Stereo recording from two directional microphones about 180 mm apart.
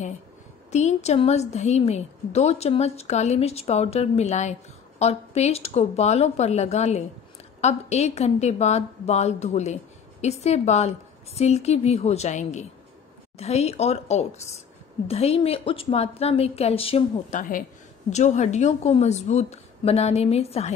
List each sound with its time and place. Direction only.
0.7 s a woman's voice: 40° left (ahead or behind)